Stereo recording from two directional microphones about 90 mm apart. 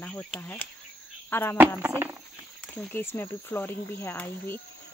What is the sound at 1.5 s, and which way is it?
Speech, 20° right (ahead or behind).